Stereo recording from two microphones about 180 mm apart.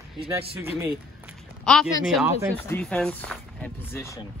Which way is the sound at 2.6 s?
5° left (ahead or behind).